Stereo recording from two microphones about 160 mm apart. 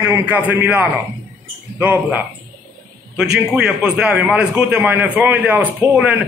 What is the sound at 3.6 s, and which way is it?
A man's voice, 5° right (ahead or behind).